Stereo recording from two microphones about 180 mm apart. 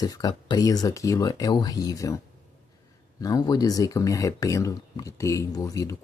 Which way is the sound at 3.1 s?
20° left (ahead or behind).